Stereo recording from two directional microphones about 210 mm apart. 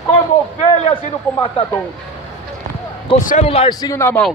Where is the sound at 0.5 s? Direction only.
30° left (ahead or behind).